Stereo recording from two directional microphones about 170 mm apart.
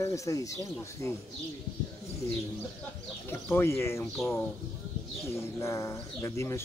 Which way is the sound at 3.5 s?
15° left (ahead or behind).